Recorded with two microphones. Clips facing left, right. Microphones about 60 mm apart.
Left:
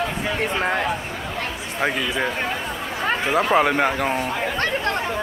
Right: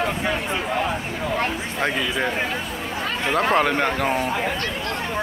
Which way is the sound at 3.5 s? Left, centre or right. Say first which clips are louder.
Left 2 dB; centre.